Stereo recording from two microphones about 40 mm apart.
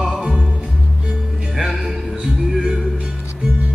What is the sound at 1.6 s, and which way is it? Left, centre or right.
Music, centre.